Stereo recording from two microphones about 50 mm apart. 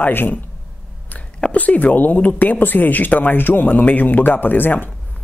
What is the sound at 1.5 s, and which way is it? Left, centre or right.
Speech, left.